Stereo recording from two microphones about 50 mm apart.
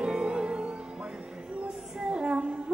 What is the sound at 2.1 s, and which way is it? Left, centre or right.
Child singing, right.